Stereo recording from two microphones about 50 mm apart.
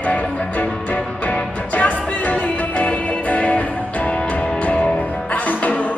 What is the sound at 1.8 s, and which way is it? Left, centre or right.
Music, left.